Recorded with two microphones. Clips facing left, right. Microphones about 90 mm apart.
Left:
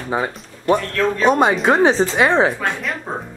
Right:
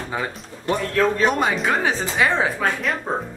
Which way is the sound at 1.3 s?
25° left (ahead or behind).